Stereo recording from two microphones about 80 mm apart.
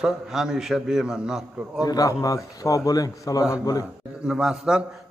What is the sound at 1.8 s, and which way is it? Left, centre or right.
A man's voice, left.